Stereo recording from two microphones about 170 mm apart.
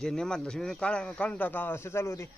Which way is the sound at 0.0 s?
5° left (ahead or behind).